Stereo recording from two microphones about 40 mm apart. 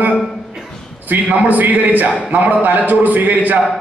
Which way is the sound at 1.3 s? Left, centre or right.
Right.